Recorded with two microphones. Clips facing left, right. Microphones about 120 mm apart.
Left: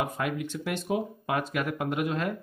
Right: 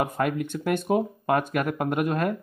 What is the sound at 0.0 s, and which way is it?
A man's voice, 50° right (ahead or behind).